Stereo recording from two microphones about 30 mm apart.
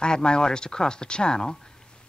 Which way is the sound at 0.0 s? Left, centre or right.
Left.